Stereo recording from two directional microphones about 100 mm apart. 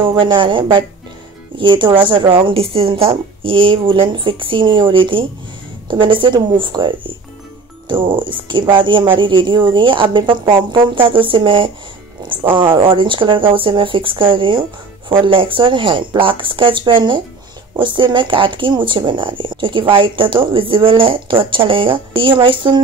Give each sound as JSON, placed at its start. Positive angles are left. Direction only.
{"t": 0.0, "sound": "speech", "side_deg": -55}